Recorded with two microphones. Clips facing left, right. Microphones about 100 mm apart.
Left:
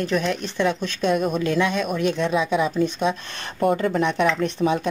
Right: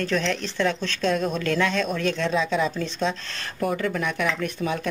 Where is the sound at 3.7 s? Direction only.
30° left (ahead or behind).